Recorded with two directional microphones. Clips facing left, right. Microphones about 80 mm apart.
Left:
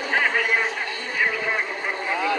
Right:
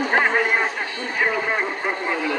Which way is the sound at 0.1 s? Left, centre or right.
Right.